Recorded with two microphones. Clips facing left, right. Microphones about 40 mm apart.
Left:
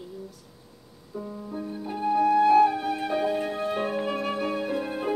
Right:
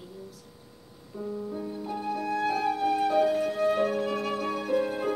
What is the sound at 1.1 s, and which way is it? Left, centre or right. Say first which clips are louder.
Speech: right 2 dB; centre.